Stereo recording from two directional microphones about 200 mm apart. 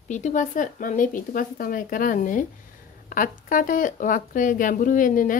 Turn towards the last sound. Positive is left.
turn(degrees=40)  # may be behind; listen again after turning